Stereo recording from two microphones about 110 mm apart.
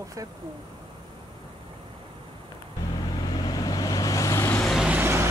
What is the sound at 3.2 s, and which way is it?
Vehicle, 40° left (ahead or behind).